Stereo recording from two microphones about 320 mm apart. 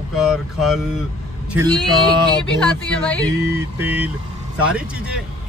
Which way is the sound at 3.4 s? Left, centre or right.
Centre.